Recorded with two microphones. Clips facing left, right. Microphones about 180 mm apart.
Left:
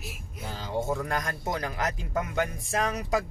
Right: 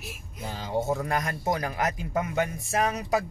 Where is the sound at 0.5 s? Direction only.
10° right (ahead or behind).